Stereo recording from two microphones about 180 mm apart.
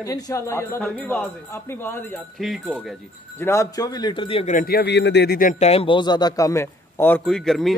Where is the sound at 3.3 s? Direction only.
15° left (ahead or behind); by 4.5 s 30° left (ahead or behind).